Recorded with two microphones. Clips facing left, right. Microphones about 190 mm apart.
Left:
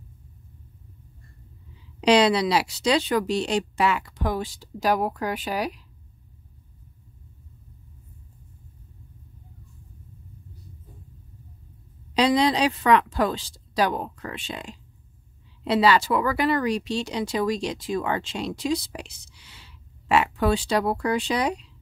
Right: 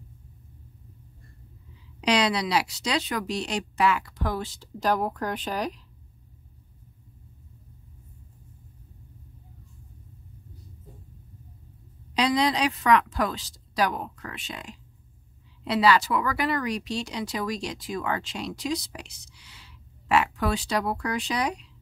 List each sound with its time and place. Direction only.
2.0 s speech: 30° left (ahead or behind); by 5.8 s 10° left (ahead or behind)
12.1 s speech: 30° left (ahead or behind)